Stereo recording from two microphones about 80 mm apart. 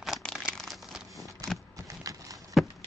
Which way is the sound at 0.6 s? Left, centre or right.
Centre.